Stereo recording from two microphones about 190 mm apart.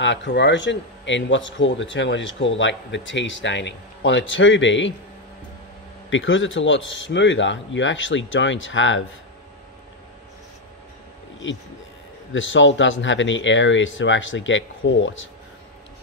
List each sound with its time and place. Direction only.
0.0 s a man's voice: 70° left (ahead or behind)
6.0 s a man's voice: 85° left
11.4 s a man's voice: 75° left (ahead or behind)